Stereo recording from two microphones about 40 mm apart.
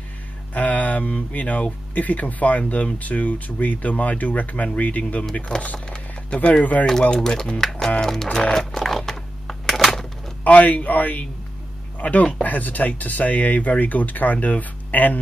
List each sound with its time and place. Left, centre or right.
0.6 s speech: left
5.9 s speech: left
6.9 s speech: centre
8.0 s music: centre
8.7 s a sound: centre
10.4 s speech: left